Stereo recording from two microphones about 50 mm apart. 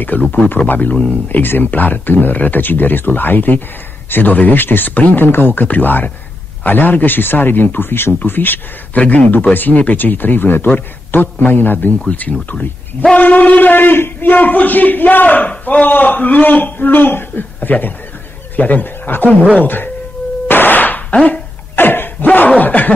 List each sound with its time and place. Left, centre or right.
0.1 s a man's voice: left
8.9 s a man's voice: left
12.1 s a man's voice: left
20.4 s a sound: left
22.6 s snicker: left